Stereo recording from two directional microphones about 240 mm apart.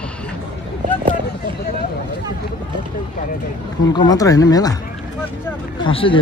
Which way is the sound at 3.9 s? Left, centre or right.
Centre.